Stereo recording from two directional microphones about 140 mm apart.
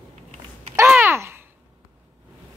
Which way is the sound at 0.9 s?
15° right (ahead or behind).